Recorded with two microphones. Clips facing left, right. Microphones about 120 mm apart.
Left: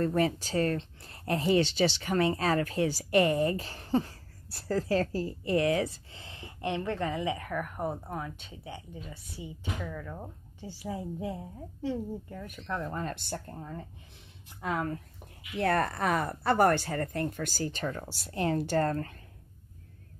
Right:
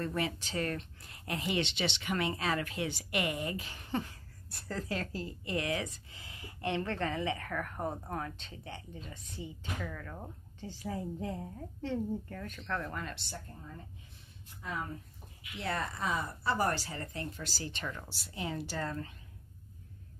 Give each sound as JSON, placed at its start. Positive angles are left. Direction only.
{"t": 0.0, "sound": "speech", "side_deg": 40}
{"t": 12.9, "sound": "speech", "side_deg": 45}
{"t": 14.5, "sound": "speech", "side_deg": 75}
{"t": 15.5, "sound": "speech", "side_deg": 55}